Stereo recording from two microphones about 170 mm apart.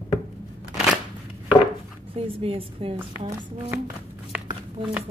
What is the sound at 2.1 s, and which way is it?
Speech, 35° right (ahead or behind).